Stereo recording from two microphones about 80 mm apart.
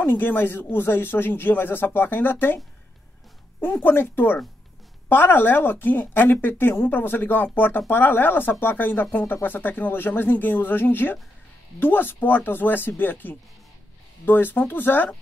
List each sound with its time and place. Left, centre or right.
0.0 s speech: left
3.6 s speech: left